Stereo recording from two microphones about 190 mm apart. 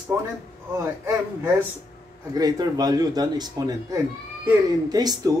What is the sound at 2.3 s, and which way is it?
Speech, 20° right (ahead or behind).